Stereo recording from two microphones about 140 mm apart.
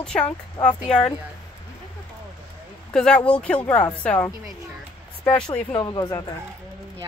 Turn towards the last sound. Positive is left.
turn(degrees=25)  # may be behind; listen again after turning